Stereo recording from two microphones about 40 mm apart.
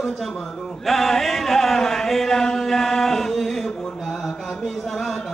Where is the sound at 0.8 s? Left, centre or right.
Centre.